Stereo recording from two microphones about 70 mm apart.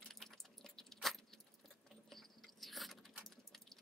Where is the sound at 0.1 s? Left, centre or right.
Centre.